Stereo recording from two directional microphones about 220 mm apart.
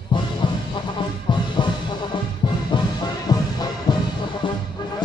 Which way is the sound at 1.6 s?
20° left (ahead or behind).